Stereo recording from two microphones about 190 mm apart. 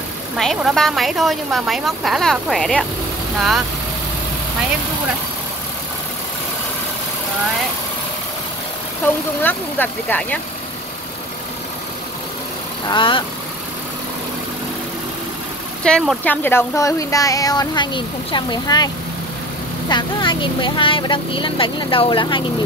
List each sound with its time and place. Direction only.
0.4 s a woman's voice: centre (ahead or behind)
9.4 s speech: 10° left (ahead or behind)
12.8 s speech: 25° left (ahead or behind)
15.8 s speech: 5° left (ahead or behind); by 18.9 s 20° left (ahead or behind)
19.9 s speech: 25° left (ahead or behind)